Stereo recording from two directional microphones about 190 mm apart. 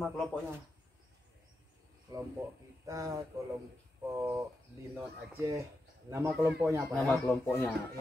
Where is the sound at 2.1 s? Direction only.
20° right (ahead or behind).